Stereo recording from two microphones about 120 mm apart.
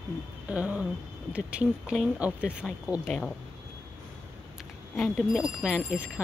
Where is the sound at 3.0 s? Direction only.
5° left (ahead or behind).